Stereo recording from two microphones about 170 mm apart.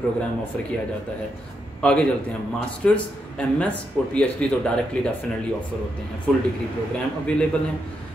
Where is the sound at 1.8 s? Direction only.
5° left (ahead or behind).